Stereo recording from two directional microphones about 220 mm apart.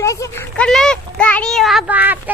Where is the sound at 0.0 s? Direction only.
15° left (ahead or behind).